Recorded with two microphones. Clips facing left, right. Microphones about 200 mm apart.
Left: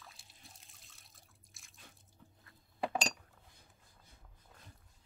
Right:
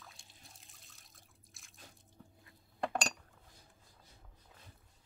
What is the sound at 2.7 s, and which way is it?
Chink, 5° left (ahead or behind).